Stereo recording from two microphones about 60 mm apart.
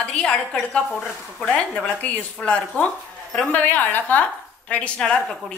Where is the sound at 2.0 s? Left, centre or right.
Left.